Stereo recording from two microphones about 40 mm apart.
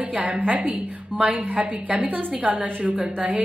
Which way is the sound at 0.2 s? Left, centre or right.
Right.